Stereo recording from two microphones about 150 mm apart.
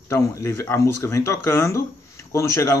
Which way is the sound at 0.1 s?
20° left (ahead or behind).